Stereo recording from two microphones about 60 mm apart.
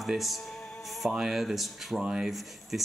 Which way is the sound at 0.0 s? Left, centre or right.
Centre.